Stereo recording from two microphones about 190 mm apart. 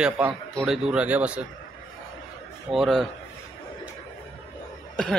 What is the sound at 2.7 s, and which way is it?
Speech, centre (ahead or behind).